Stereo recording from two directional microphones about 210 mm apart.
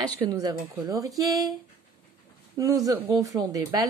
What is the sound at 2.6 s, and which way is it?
Speech, 15° right (ahead or behind).